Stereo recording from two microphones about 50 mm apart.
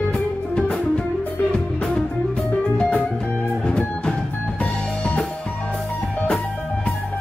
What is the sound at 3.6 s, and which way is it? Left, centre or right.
Music, centre.